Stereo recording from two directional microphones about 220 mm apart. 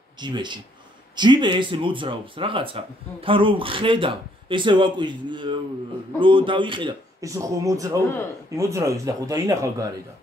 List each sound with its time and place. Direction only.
0.2 s speech: 20° right (ahead or behind)